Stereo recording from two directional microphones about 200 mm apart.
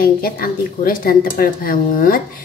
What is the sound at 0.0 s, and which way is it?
Speech, 45° left (ahead or behind).